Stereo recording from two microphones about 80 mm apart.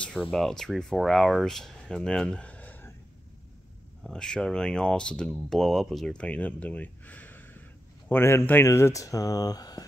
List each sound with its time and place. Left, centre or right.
0.3 s speech: centre
4.0 s speech: centre
6.1 s speech: centre; by 9.8 s left